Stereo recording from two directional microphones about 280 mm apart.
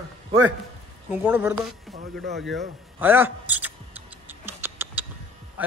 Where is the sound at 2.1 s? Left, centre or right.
Right.